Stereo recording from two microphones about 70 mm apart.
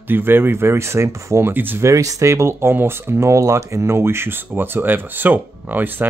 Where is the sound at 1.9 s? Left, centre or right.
Right.